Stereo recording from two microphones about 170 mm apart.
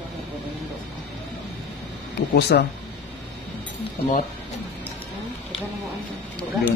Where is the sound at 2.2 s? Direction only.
80° left.